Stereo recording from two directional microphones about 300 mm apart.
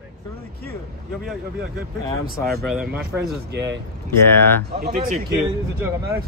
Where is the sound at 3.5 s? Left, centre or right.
Right.